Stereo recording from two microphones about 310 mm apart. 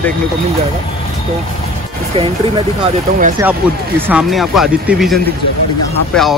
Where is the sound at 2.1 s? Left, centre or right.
Centre.